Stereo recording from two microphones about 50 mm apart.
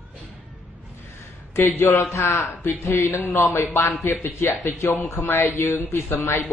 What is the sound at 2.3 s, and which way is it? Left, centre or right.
Speech, left.